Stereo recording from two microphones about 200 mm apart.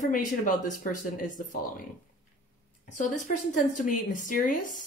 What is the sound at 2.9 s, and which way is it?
Speech, 40° left (ahead or behind).